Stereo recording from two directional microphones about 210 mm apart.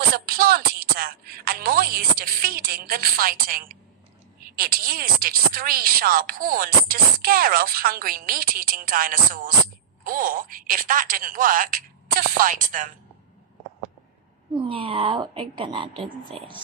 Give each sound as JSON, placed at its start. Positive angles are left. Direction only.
{"t": 0.1, "sound": "music", "side_deg": -45}
{"t": 4.6, "sound": "speech", "side_deg": -45}
{"t": 14.6, "sound": "speech", "side_deg": -25}